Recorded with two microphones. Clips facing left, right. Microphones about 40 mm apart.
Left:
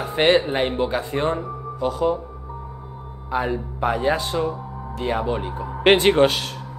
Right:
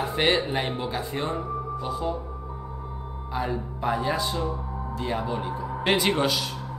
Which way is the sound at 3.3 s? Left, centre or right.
Left.